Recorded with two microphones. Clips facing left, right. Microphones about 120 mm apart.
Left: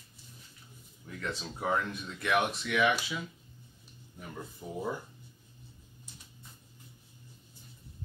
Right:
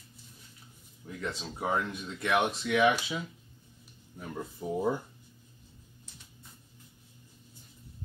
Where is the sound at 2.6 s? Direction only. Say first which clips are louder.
Right 3 dB; 25° right (ahead or behind).